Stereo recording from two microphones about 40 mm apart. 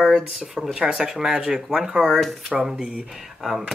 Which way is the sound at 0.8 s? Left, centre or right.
Centre.